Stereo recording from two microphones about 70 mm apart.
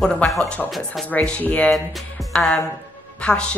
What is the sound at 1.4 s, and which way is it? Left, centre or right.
A woman's voice, left.